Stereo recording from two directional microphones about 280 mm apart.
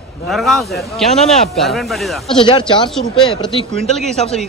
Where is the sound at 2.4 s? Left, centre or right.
Centre.